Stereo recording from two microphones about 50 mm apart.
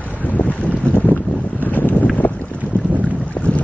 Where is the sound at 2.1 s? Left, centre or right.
Left.